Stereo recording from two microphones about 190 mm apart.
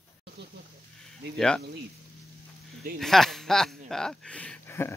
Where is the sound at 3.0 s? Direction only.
Centre (ahead or behind).